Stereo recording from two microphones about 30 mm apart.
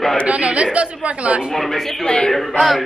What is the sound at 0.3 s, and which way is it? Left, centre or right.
A woman's voice, right.